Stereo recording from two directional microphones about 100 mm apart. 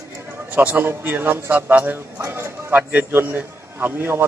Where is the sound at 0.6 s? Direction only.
20° right (ahead or behind).